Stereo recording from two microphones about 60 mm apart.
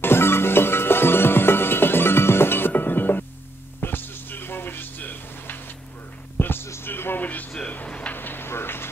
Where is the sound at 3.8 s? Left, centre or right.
Left.